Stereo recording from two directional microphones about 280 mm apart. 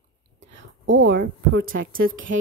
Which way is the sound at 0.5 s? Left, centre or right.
Right.